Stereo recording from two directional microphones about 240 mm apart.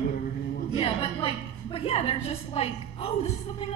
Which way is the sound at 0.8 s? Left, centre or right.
Left.